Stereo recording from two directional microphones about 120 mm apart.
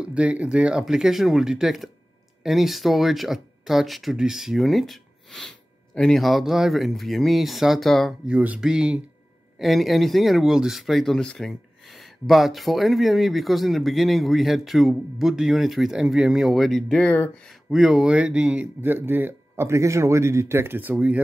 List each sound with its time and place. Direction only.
0.0 s speech: 10° right (ahead or behind)
8.3 s speech: 10° right (ahead or behind); by 17.6 s 10° left (ahead or behind)
17.6 s speech: 5° right (ahead or behind)